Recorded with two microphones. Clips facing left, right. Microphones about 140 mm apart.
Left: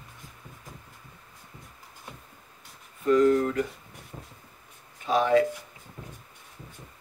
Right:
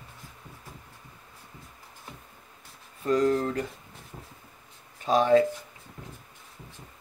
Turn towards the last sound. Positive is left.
turn(degrees=-35)  # may be behind; listen again after turning